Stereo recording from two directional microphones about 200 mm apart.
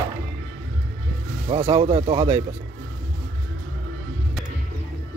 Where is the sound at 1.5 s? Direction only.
25° right (ahead or behind).